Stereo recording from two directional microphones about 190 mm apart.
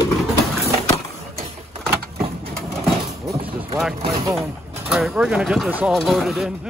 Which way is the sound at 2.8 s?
5° right (ahead or behind).